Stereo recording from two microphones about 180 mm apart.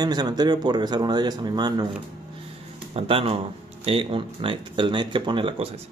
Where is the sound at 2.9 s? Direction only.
30° right (ahead or behind).